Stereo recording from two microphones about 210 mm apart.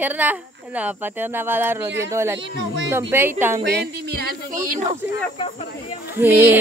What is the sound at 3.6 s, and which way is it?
Speech, 50° right (ahead or behind).